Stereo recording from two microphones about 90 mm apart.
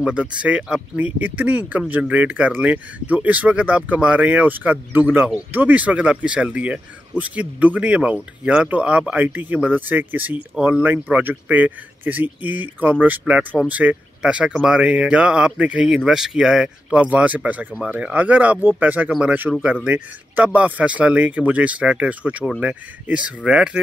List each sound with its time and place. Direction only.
0.0 s speech: 10° right (ahead or behind)